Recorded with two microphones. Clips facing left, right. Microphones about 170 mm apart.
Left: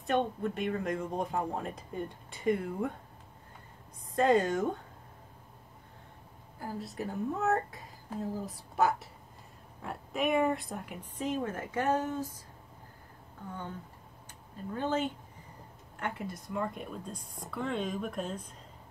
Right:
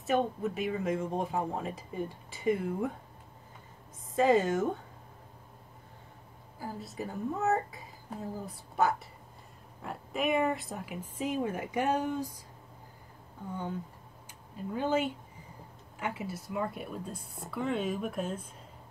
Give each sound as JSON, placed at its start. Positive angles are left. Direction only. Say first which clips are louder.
{"t": 0.0, "sound": "speech", "louder": "right 1 dB", "side_deg": -5}
{"t": 4.1, "sound": "speech", "louder": "right 1 dB", "side_deg": 0}
{"t": 6.6, "sound": "speech", "louder": "left 1 dB", "side_deg": 0}
{"t": 13.5, "sound": "speech", "louder": "right 5 dB", "side_deg": -10}